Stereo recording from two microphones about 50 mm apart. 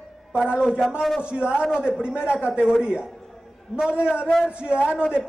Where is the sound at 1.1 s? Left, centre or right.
Centre.